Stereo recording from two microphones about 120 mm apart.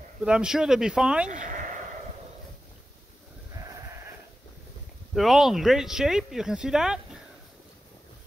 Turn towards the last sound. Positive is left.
turn(degrees=-5)  # may be behind; listen again after turning